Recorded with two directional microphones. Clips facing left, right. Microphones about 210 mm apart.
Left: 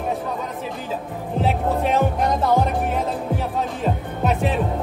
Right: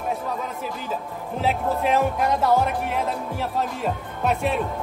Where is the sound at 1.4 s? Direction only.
Centre (ahead or behind).